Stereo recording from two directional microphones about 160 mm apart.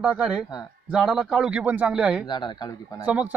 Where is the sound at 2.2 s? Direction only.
30° left (ahead or behind).